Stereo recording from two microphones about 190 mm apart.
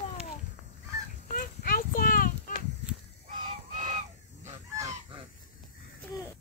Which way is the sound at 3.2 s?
40° right (ahead or behind).